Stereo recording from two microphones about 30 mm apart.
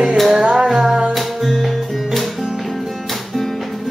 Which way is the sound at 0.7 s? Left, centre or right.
Centre.